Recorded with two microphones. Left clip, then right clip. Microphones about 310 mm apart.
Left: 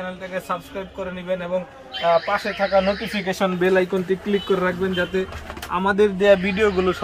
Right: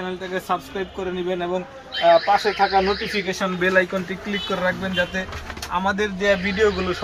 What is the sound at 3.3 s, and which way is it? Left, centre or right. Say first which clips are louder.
Speech: left 2 dB; left.